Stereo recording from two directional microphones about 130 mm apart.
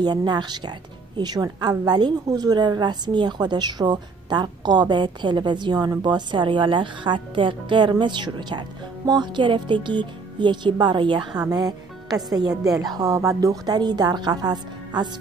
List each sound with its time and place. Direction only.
0.0 s a woman's voice: 35° right (ahead or behind)